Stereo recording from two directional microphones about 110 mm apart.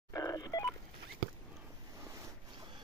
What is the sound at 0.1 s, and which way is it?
Telephone dialing, 30° left (ahead or behind).